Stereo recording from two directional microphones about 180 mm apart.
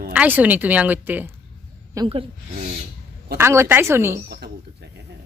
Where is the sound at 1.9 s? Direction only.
30° right (ahead or behind).